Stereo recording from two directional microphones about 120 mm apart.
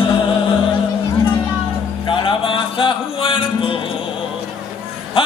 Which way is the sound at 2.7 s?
45° left (ahead or behind).